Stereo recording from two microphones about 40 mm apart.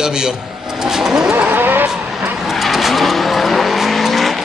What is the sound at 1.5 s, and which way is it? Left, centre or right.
Vehicle, right.